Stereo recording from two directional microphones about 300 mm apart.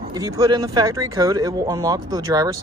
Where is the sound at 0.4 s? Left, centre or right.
Centre.